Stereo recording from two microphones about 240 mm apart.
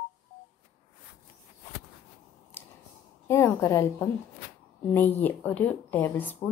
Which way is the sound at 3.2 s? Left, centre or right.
Centre.